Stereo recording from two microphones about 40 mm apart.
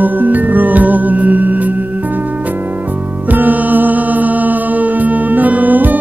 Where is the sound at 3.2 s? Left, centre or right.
Right.